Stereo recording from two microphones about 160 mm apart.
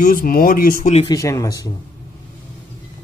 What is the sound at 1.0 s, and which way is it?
Speech, 20° left (ahead or behind).